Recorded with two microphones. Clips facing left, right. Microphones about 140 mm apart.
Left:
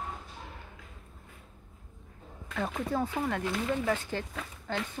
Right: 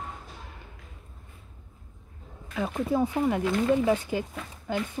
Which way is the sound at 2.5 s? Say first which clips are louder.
Right 4 dB; 5° right (ahead or behind).